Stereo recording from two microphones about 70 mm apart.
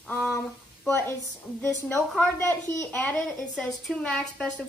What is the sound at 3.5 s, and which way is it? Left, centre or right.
A woman's voice, centre.